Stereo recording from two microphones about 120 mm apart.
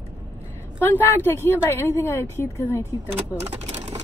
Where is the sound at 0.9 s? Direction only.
20° left (ahead or behind).